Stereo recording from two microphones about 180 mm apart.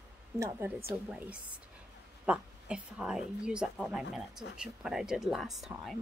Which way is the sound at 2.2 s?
5° right (ahead or behind).